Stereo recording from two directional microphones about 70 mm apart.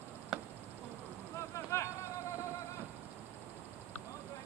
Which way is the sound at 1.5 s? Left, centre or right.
Left.